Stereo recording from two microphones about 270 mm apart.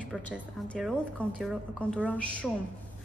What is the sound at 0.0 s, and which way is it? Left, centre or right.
A woman's voice, centre.